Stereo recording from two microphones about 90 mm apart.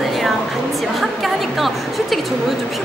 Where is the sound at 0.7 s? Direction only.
Centre (ahead or behind).